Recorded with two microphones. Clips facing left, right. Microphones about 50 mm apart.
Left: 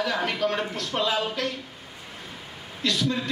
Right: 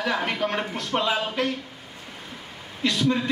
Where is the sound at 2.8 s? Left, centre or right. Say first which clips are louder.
Right 3 dB; right.